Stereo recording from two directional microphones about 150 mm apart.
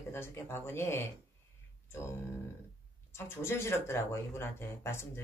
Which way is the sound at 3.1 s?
15° left (ahead or behind).